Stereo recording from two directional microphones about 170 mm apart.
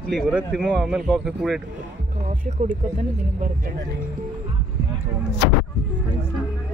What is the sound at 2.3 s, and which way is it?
Speech, 50° right (ahead or behind).